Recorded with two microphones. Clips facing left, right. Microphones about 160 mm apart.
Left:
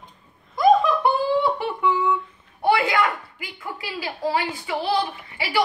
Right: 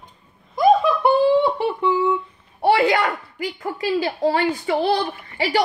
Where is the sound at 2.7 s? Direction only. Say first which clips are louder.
Right 3 dB; 35° right (ahead or behind).